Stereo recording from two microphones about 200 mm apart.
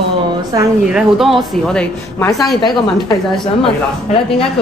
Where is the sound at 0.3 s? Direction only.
20° right (ahead or behind).